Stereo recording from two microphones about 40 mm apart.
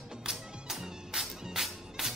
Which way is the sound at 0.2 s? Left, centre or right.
Centre.